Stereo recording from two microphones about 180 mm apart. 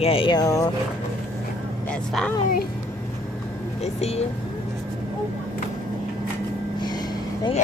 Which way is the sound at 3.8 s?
35° left (ahead or behind).